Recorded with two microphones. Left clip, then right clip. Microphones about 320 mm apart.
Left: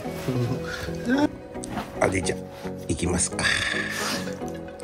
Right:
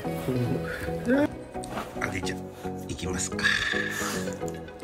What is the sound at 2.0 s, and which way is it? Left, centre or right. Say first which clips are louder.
Music: left 9 dB; centre.